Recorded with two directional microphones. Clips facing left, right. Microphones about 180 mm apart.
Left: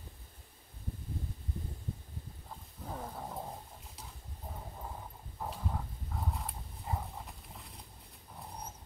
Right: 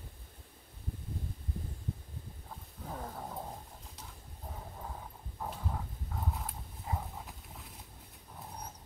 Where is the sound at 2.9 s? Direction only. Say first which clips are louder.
Even; centre (ahead or behind).